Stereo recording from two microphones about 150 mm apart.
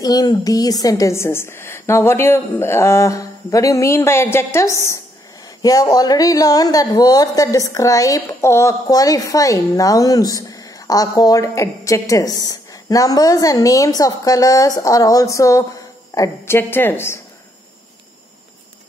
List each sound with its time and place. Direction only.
0.0 s a woman's voice: 25° left (ahead or behind)